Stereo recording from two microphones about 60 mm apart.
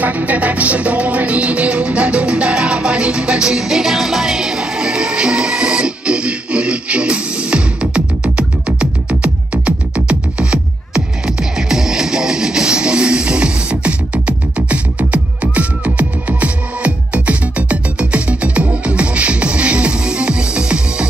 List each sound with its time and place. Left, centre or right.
0.0 s music: right